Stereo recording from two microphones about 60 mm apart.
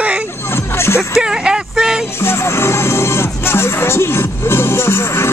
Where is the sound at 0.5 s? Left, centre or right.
Left.